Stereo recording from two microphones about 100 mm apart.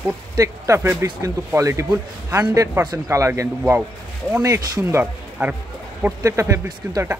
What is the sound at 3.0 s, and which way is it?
Speech, 30° right (ahead or behind).